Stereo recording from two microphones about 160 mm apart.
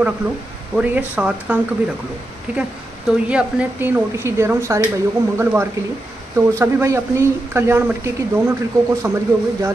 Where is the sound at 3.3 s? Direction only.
10° right (ahead or behind).